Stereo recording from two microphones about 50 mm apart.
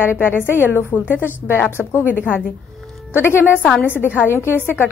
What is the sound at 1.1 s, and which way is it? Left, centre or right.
Speech, right.